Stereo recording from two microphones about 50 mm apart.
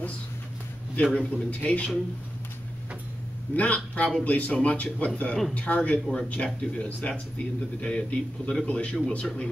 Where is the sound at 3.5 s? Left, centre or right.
Left.